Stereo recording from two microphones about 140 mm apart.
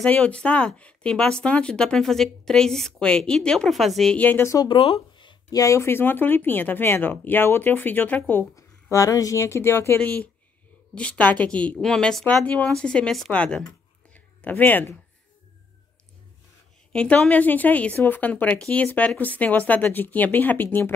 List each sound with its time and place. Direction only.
0.0 s speech: 10° left (ahead or behind)
4.6 s speech: 40° left (ahead or behind); by 13.7 s 5° left (ahead or behind)
14.1 s a sound: 10° left (ahead or behind)
16.9 s speech: 5° left (ahead or behind)